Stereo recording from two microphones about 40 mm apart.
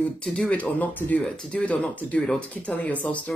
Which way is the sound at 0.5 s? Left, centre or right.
Left.